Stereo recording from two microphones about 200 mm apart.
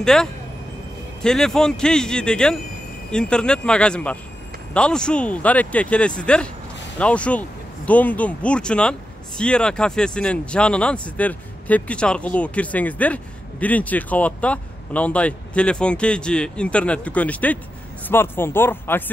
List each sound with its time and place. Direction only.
0.0 s speech: 5° left (ahead or behind)